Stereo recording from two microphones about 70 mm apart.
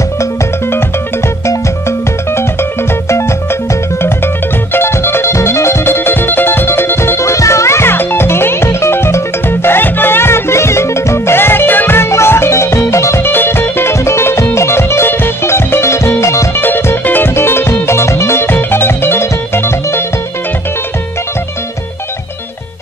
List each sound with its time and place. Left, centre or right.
1.5 s music: left
4.7 s music: left
13.3 s music: left
16.6 s music: left